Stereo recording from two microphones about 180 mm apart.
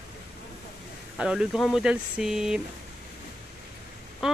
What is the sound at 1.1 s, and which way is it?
Speech, 5° right (ahead or behind).